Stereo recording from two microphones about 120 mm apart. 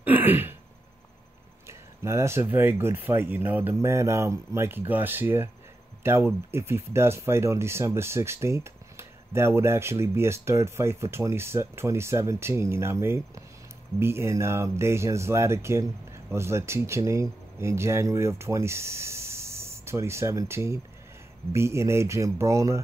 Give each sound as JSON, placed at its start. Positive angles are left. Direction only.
{"t": 0.0, "sound": "throat clearing", "side_deg": -15}
{"t": 1.7, "sound": "speech", "side_deg": -25}